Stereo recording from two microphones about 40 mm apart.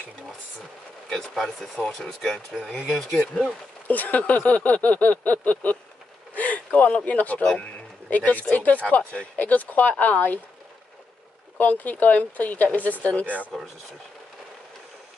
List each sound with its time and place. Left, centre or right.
1.3 s speech: centre
3.8 s speech: left
6.3 s a sound: left
7.1 s speech: left
11.5 s speech: left
13.5 s speech: centre